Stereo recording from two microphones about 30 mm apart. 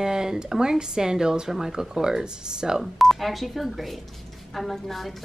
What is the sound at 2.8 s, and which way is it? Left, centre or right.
Speech, centre.